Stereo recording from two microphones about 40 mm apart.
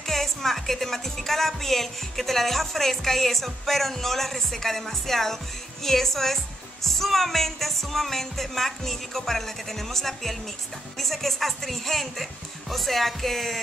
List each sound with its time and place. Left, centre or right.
0.0 s speech: centre